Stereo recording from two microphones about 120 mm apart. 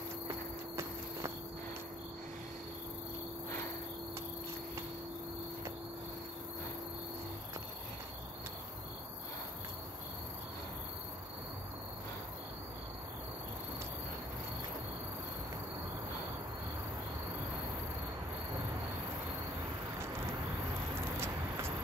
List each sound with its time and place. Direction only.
0.3 s walk: 25° right (ahead or behind)
21.0 s vehicle: 20° right (ahead or behind)